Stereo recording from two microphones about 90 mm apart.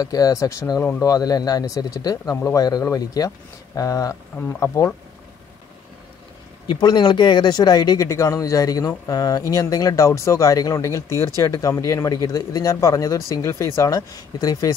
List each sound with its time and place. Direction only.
0.0 s speech: 40° left (ahead or behind)
6.7 s speech: 55° left (ahead or behind)